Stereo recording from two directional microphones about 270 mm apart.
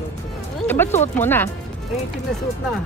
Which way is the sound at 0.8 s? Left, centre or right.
Centre.